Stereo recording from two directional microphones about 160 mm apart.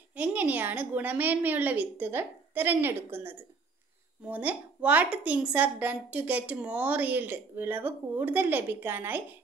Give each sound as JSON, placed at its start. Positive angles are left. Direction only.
{"t": 0.1, "sound": "a woman's voice", "side_deg": -10}